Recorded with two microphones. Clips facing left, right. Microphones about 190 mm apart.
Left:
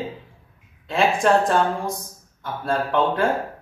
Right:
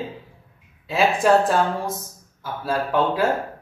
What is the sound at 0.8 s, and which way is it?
A man's voice, 5° right (ahead or behind).